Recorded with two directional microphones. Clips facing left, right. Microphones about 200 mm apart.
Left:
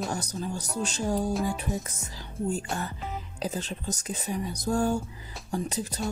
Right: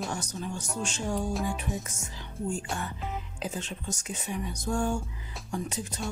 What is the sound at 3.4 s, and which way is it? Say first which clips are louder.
Speech: left 4 dB; 35° left (ahead or behind).